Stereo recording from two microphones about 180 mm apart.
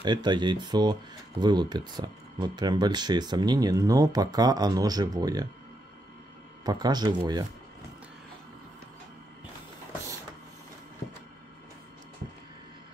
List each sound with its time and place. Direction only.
0.0 s speech: 25° right (ahead or behind)
6.6 s speech: 20° right (ahead or behind)